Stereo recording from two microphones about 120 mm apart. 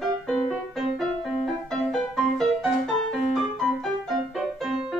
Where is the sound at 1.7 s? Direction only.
Centre (ahead or behind).